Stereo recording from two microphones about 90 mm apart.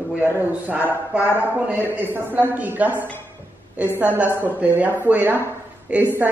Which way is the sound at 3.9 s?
20° right (ahead or behind).